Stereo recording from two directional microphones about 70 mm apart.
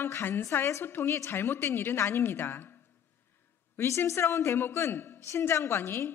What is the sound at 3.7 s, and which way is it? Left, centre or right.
A woman's voice, left.